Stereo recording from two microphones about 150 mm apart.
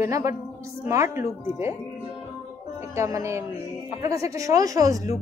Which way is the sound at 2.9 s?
20° right (ahead or behind).